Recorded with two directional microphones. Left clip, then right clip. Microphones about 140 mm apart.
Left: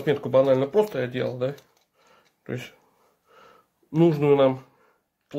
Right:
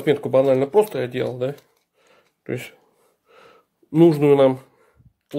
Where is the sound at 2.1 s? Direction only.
45° right (ahead or behind).